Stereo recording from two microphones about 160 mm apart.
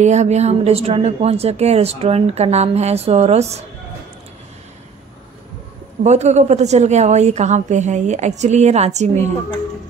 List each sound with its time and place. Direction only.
0.0 s a woman's voice: 45° right (ahead or behind)
6.0 s a woman's voice: 45° right (ahead or behind)